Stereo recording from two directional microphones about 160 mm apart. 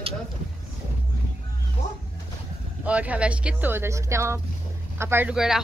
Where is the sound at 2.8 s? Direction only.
10° right (ahead or behind).